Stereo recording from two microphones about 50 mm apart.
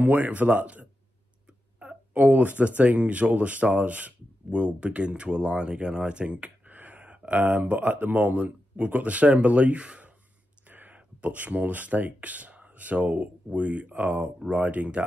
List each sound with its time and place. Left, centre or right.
0.0 s speech: right
2.1 s speech: right